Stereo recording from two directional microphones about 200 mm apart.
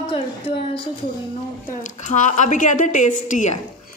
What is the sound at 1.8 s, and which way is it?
Speech, 35° left (ahead or behind).